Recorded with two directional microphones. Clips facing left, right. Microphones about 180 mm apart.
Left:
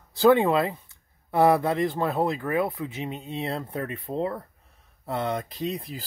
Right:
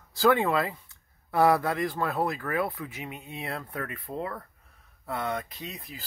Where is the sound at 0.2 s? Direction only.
20° left (ahead or behind).